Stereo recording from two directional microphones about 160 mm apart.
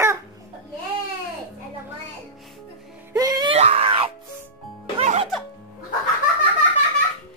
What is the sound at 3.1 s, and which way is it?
Music, 25° right (ahead or behind).